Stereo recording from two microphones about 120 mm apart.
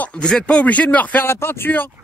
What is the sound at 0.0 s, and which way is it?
Speech, 10° left (ahead or behind).